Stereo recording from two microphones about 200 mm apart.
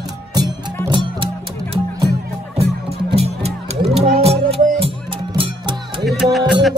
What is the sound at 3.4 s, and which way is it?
Music, 30° right (ahead or behind).